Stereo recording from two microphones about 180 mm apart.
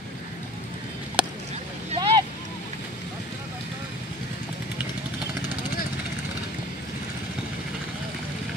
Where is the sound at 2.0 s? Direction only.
25° right (ahead or behind).